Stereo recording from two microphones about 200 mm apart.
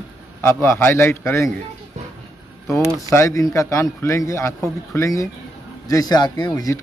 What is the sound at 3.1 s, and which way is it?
Speech, 15° left (ahead or behind).